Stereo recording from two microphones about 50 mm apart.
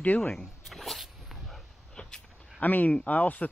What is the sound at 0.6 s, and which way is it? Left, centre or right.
Dog, centre.